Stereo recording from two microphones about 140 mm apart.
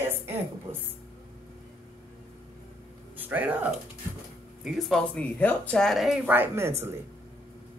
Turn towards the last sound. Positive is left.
turn(degrees=-20)  # may be behind; listen again after turning